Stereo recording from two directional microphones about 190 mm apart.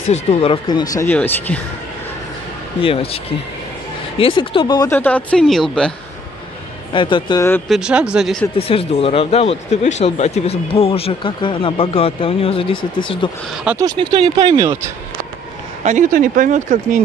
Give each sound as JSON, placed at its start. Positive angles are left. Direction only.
{"t": 0.1, "sound": "speech", "side_deg": 30}
{"t": 2.8, "sound": "speech", "side_deg": 30}
{"t": 6.9, "sound": "speech", "side_deg": 25}
{"t": 7.6, "sound": "speech", "side_deg": 0}
{"t": 8.5, "sound": "speech", "side_deg": 30}
{"t": 13.7, "sound": "speech", "side_deg": -20}
{"t": 15.8, "sound": "speech", "side_deg": -40}